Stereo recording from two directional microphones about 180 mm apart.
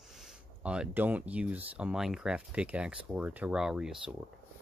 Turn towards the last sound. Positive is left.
turn(degrees=-5)  # may be behind; listen again after turning